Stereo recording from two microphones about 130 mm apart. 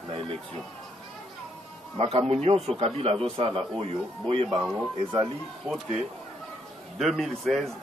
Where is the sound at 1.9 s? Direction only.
45° right (ahead or behind).